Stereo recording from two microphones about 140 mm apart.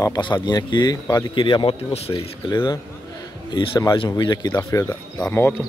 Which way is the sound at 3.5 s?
35° left (ahead or behind).